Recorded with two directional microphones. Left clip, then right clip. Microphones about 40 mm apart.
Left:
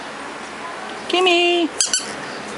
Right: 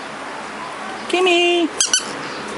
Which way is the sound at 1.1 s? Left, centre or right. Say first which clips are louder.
Even; left.